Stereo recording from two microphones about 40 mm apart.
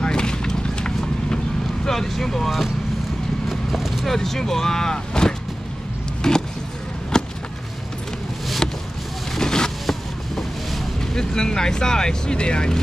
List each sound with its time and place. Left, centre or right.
0.0 s vehicle: centre
1.9 s speech: centre
3.4 s clip-clop: centre
4.1 s speech: centre
7.1 s a sound: centre
8.6 s a sound: centre
9.3 s vehicle: centre
9.8 s vehicle: centre
11.0 s speech: centre